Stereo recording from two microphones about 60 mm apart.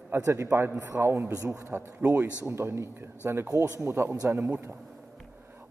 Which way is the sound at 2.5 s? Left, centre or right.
Right.